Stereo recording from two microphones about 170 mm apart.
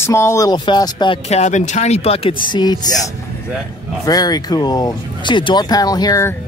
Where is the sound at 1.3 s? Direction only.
40° left (ahead or behind); by 3.0 s 25° left (ahead or behind).